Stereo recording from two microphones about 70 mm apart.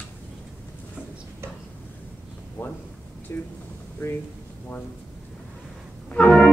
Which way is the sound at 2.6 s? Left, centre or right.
Left.